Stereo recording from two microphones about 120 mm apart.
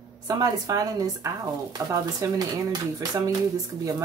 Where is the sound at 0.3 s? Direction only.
30° right (ahead or behind).